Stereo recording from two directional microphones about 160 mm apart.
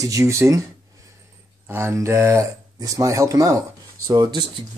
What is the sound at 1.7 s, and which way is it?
Speech, 15° right (ahead or behind).